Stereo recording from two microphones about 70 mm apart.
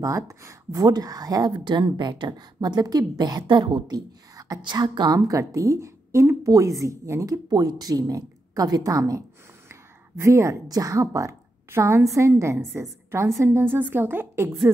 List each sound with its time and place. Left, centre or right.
0.0 s a woman's voice: right
0.7 s a woman's voice: right
7.4 s a woman's voice: right
9.7 s a sound: right
10.7 s a woman's voice: right